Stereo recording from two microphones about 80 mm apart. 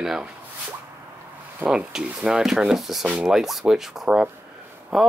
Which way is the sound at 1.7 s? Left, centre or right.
Centre.